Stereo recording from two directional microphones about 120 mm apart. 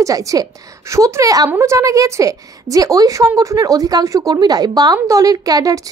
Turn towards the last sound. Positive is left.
turn(degrees=-30)  # may be behind; listen again after turning